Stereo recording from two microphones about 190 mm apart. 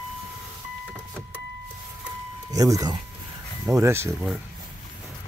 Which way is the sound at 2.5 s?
20° right (ahead or behind).